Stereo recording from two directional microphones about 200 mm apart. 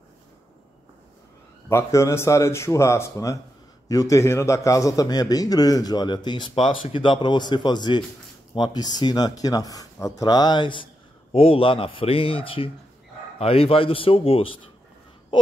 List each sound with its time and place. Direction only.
1.7 s a man's voice: 15° left (ahead or behind)